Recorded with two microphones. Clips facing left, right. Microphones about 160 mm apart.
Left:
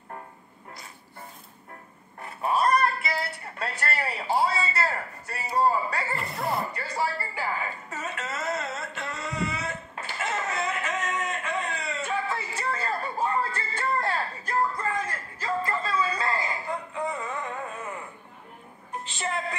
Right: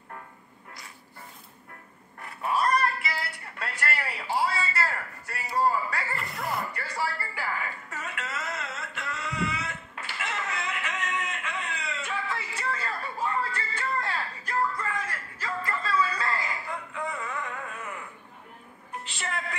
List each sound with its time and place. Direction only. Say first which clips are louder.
2.2 s music: left 2 dB; 25° left (ahead or behind)
8.9 s a sound: left 1 dB; 30° left (ahead or behind)
19.1 s music: left 4 dB; 25° left (ahead or behind)